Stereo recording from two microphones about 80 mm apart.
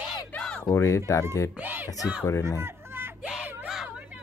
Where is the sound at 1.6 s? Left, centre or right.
Right.